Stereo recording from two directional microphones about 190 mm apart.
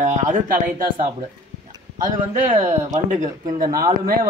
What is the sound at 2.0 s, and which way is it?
Speech, 40° right (ahead or behind).